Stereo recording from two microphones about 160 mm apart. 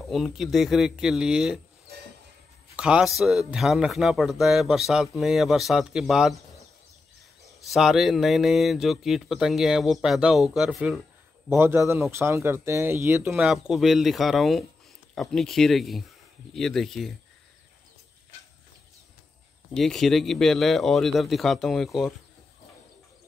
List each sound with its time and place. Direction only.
0.1 s speech: centre (ahead or behind)
2.7 s speech: 5° right (ahead or behind)
7.6 s speech: centre (ahead or behind)
13.3 s speech: 5° right (ahead or behind)
19.7 s speech: centre (ahead or behind)